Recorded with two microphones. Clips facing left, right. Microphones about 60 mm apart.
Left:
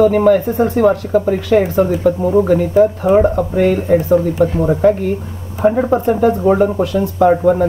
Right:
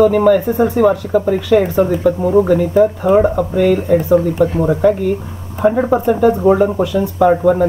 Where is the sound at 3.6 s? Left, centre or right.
Centre.